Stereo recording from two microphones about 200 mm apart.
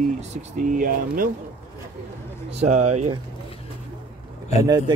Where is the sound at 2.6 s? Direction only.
35° right (ahead or behind).